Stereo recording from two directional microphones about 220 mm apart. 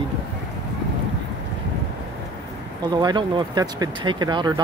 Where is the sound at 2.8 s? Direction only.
20° right (ahead or behind).